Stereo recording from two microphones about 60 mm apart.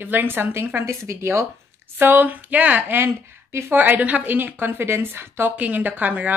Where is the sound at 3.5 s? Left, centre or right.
Right.